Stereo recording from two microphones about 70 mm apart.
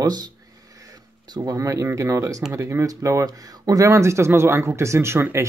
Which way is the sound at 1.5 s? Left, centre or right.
Right.